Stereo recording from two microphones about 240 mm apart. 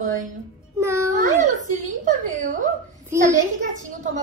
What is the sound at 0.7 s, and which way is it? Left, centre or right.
Speech, centre.